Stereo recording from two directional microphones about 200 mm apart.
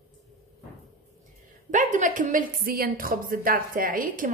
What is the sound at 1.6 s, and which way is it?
A woman's voice, 40° right (ahead or behind).